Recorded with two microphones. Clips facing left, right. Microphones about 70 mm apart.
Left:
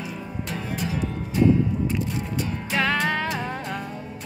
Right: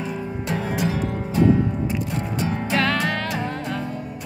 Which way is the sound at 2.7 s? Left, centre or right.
Centre.